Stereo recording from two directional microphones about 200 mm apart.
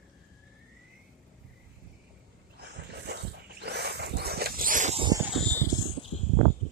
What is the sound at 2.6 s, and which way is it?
Dog, 55° right (ahead or behind).